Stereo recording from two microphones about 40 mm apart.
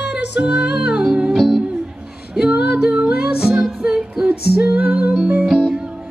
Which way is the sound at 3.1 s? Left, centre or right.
Right.